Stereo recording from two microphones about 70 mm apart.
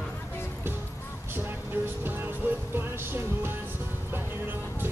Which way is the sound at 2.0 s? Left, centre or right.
Right.